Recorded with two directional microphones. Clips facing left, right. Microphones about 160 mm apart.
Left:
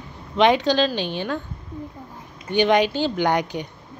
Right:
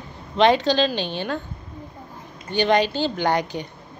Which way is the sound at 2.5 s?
15° left (ahead or behind).